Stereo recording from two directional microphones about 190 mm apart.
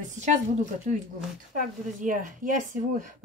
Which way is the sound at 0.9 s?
40° right (ahead or behind).